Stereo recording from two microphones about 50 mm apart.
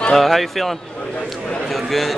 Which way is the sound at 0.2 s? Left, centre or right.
Centre.